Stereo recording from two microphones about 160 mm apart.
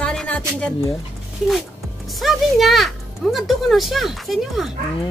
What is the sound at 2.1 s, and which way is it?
Speech, centre (ahead or behind).